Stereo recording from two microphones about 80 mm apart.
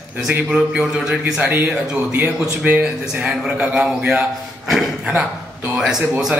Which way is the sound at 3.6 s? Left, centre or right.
Centre.